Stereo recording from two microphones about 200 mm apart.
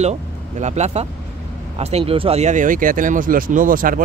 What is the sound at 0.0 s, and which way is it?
Speech, 35° right (ahead or behind).